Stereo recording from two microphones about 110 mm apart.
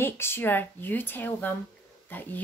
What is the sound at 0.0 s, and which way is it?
A woman's voice, 20° left (ahead or behind).